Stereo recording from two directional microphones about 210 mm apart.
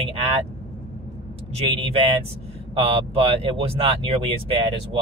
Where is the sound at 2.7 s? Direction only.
25° right (ahead or behind).